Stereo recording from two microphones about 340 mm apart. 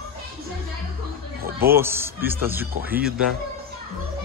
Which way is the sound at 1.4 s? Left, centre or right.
Right.